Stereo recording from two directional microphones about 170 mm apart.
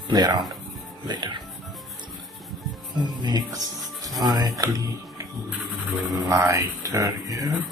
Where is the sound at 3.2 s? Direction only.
25° right (ahead or behind).